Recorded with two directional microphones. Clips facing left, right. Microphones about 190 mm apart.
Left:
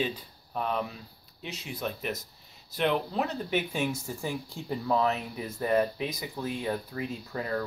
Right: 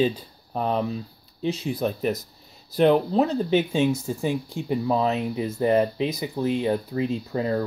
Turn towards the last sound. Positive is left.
turn(degrees=-25)  # may be behind; listen again after turning